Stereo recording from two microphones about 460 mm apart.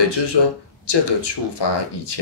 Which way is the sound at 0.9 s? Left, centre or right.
Left.